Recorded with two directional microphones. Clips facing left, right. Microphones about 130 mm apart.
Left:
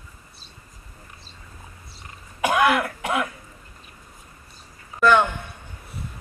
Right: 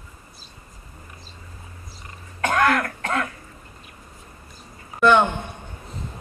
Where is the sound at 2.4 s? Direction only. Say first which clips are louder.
Left 1 dB; 10° left (ahead or behind).